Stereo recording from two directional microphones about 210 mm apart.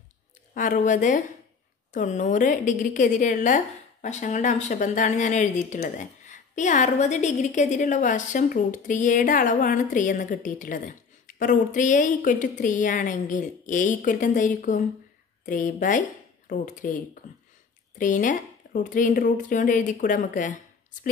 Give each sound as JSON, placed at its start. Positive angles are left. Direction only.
{"t": 0.6, "sound": "a woman's voice", "side_deg": 40}